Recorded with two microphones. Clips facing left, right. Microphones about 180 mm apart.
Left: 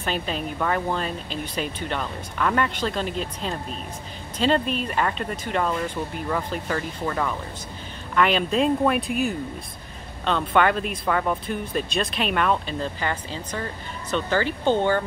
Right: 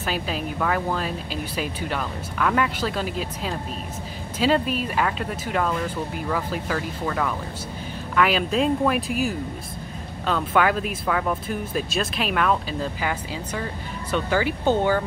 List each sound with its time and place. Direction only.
0.0 s speech: 5° right (ahead or behind)